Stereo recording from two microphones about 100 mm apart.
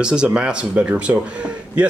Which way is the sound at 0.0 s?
10° right (ahead or behind).